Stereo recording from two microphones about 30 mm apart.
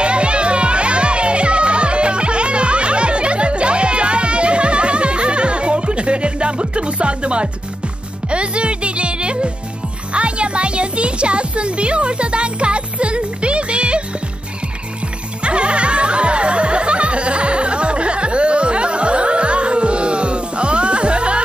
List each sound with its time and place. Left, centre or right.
0.0 s music: right
15.4 s music: right